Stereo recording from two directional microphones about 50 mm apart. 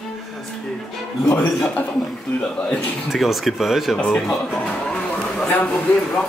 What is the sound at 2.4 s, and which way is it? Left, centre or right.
Speech, left.